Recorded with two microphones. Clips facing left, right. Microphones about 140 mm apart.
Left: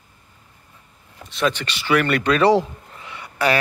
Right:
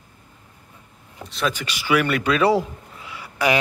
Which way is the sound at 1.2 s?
Centre (ahead or behind).